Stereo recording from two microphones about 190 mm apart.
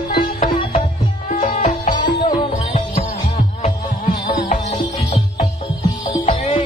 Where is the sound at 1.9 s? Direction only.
25° left (ahead or behind).